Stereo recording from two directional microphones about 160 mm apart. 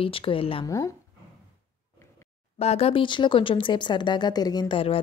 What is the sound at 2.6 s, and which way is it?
Speech, 40° left (ahead or behind).